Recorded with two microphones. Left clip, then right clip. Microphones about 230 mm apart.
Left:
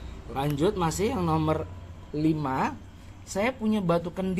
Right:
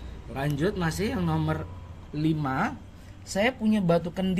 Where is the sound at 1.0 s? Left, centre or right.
Centre.